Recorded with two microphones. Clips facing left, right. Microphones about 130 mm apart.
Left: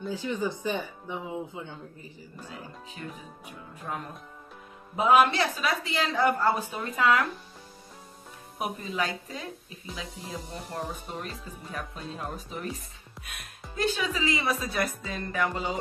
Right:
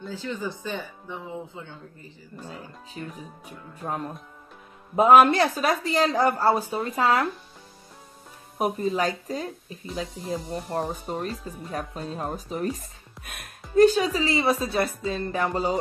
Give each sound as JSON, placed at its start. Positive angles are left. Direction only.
{"t": 0.1, "sound": "speech", "side_deg": 15}
{"t": 3.0, "sound": "speech", "side_deg": -35}
{"t": 4.9, "sound": "a woman's voice", "side_deg": -50}
{"t": 8.5, "sound": "speech", "side_deg": -40}
{"t": 10.5, "sound": "speech", "side_deg": -40}